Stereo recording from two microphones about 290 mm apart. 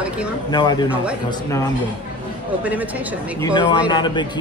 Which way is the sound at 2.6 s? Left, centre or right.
Centre.